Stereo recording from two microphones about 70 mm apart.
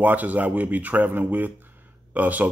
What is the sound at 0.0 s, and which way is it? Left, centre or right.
Speech, right.